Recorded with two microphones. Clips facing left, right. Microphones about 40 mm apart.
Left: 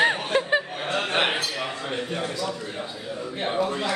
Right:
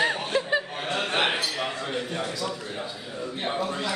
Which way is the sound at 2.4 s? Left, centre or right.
Centre.